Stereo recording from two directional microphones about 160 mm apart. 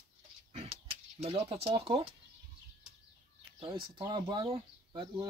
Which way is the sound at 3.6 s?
30° right (ahead or behind).